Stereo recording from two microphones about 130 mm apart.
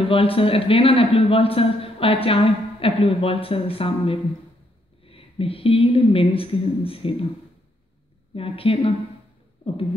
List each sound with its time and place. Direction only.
0.1 s speech: 45° left (ahead or behind)
8.4 s speech: 45° left (ahead or behind)